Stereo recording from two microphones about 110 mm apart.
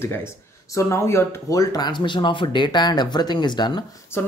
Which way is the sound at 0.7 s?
25° left (ahead or behind).